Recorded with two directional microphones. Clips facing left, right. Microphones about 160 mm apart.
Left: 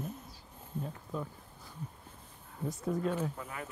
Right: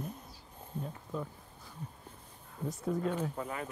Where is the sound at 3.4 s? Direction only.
30° right (ahead or behind).